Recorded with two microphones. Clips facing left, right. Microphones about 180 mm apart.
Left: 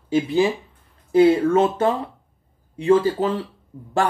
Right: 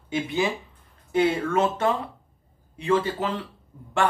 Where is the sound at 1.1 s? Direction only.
35° left (ahead or behind).